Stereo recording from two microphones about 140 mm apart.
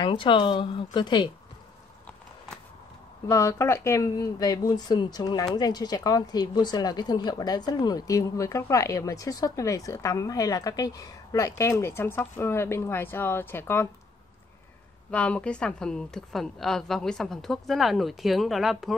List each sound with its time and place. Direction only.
0.0 s speech: 35° left (ahead or behind)
3.3 s speech: 20° left (ahead or behind)
15.0 s a woman's voice: 10° left (ahead or behind)